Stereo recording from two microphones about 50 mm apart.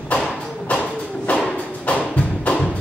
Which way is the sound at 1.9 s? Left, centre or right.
Left.